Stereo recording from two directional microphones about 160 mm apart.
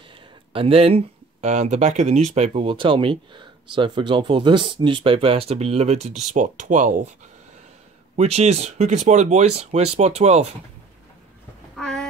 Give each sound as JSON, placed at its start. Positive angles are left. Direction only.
{"t": 0.5, "sound": "speech", "side_deg": -35}
{"t": 8.2, "sound": "speech", "side_deg": -40}
{"t": 11.7, "sound": "a sound", "side_deg": 5}